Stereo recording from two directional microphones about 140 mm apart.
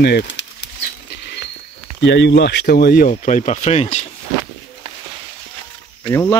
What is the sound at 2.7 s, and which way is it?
Speech, 90° left.